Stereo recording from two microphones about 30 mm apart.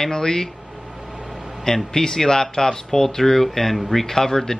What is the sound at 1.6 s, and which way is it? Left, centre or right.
Speech, centre.